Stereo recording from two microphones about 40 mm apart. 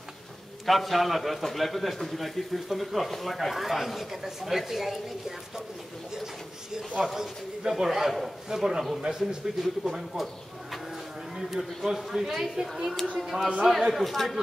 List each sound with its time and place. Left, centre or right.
0.7 s speech: centre
7.2 s speech: centre
9.6 s speech: centre
11.3 s speech: centre